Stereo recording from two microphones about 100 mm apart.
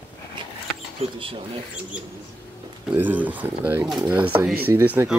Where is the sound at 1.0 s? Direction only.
90° right.